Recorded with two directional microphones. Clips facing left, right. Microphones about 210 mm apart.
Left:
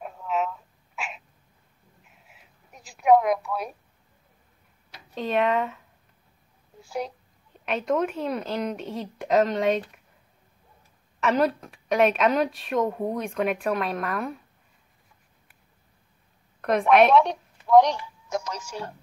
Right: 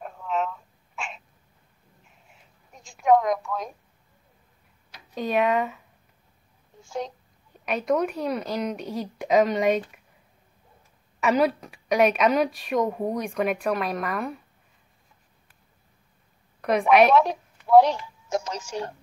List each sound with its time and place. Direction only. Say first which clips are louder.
0.0 s a sound: even; 5° left (ahead or behind)
5.1 s a woman's voice: right 1 dB; centre (ahead or behind)
6.8 s a child's voice: even; 5° left (ahead or behind)
11.1 s a woman's voice: right 1 dB; 5° right (ahead or behind)
16.6 s a woman's voice: even; centre (ahead or behind)
18.3 s speech: right 2 dB; 25° right (ahead or behind)